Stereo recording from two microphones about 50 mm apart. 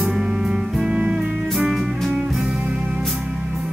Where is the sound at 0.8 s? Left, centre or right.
Right.